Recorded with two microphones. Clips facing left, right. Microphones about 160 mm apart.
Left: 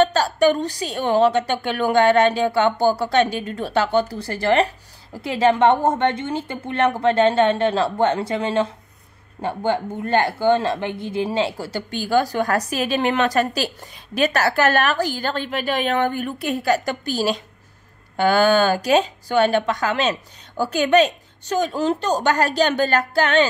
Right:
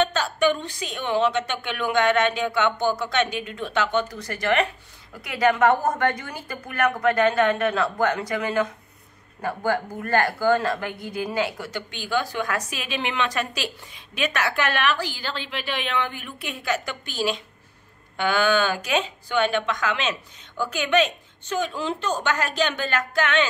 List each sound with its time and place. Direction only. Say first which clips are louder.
0.0 s a woman's voice: left 5 dB; 35° left (ahead or behind)